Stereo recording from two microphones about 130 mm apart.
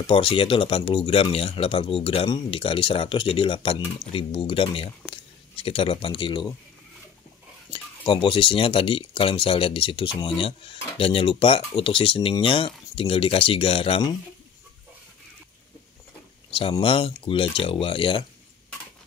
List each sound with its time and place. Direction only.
0.0 s speech: 40° left (ahead or behind)
7.7 s speech: 40° left (ahead or behind)
16.4 s speech: 45° left (ahead or behind)